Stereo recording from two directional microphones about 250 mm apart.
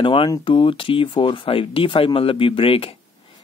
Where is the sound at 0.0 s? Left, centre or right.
Centre.